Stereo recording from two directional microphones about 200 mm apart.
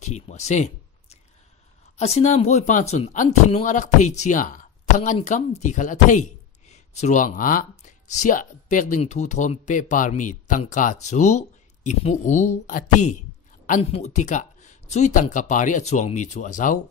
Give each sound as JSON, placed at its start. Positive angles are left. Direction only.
{"t": 0.0, "sound": "speech", "side_deg": 35}
{"t": 2.0, "sound": "speech", "side_deg": 35}